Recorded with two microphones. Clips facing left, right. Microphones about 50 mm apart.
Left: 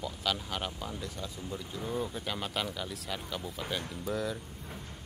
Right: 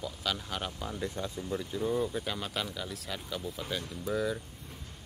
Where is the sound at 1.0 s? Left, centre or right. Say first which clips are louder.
Right 5 dB; right.